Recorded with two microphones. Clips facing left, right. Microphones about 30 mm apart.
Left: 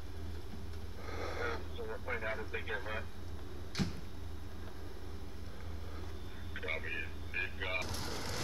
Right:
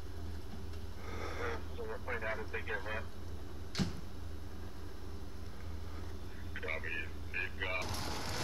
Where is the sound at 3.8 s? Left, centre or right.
Centre.